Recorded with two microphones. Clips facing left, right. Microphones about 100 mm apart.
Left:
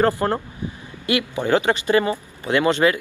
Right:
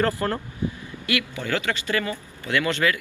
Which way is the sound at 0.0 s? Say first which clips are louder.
Left 5 dB; 20° left (ahead or behind).